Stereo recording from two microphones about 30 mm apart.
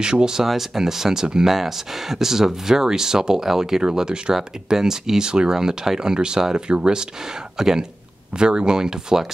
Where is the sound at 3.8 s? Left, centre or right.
Right.